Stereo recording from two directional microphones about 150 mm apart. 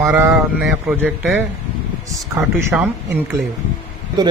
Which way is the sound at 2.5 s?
10° right (ahead or behind).